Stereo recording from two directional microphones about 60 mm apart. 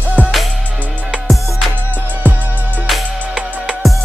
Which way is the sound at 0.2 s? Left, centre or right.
Left.